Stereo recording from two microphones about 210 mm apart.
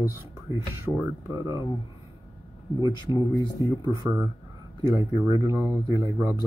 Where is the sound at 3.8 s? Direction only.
15° right (ahead or behind).